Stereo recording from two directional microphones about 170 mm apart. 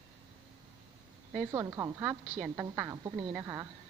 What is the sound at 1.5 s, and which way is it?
A woman's voice, 20° right (ahead or behind).